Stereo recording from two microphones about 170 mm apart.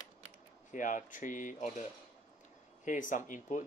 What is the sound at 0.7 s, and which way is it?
Speech, 50° left (ahead or behind).